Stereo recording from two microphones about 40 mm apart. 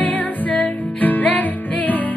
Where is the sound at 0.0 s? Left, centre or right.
Left.